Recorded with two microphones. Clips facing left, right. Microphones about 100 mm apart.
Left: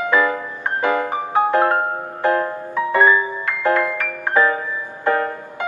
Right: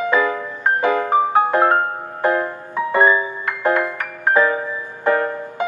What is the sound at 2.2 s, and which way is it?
Music, 20° right (ahead or behind).